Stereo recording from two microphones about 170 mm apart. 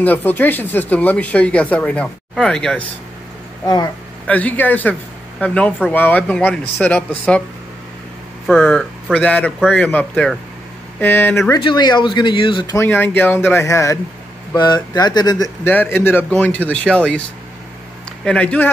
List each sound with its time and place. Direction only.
0.0 s speech: 10° left (ahead or behind)
3.6 s speech: 25° left (ahead or behind)
4.3 s speech: 10° left (ahead or behind)
8.5 s speech: 5° left (ahead or behind)
11.6 s speech: 25° left (ahead or behind)
12.8 s speech: 10° left (ahead or behind)
15.7 s speech: 10° left (ahead or behind)
18.2 s speech: 5° left (ahead or behind)